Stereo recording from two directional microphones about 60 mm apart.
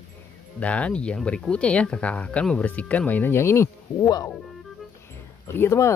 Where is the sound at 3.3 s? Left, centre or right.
Left.